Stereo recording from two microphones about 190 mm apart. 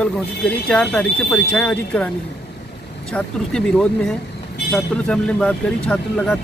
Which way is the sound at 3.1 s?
5° left (ahead or behind).